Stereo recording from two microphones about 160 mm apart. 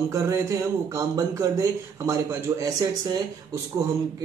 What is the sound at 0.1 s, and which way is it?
Speech, 20° right (ahead or behind).